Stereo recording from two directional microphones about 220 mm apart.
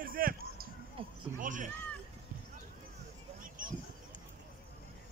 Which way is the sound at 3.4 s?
40° right (ahead or behind).